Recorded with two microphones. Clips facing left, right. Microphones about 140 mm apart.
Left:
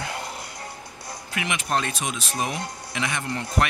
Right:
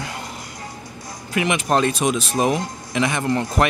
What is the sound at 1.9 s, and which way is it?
Speech, 65° right (ahead or behind).